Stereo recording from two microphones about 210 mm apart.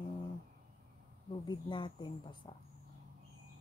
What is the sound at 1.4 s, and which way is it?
Speech, 20° left (ahead or behind).